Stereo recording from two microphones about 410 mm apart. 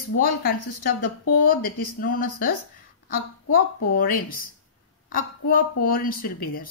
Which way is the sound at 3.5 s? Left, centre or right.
Left.